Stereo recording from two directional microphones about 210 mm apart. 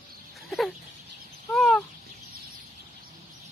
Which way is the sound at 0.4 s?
Centre (ahead or behind).